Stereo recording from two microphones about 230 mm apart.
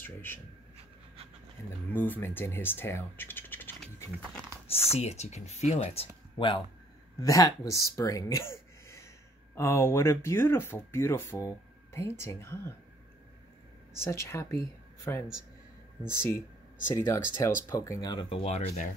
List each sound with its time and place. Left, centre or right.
0.0 s speech: centre
2.0 s speech: centre
4.6 s speech: left; by 12.7 s centre
13.9 s speech: centre
16.3 s a sound: left
16.9 s speech: centre